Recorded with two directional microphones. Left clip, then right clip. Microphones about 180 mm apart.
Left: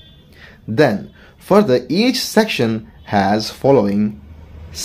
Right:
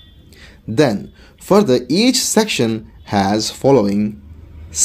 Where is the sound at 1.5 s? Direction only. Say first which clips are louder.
Even; 30° right (ahead or behind).